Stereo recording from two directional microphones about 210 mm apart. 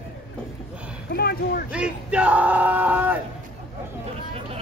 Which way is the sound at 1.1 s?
45° left (ahead or behind).